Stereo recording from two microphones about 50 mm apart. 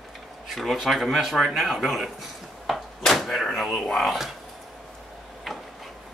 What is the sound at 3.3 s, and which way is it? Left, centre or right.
Speech, centre.